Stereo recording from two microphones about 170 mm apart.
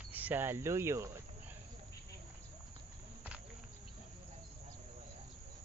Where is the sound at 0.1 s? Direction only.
10° right (ahead or behind).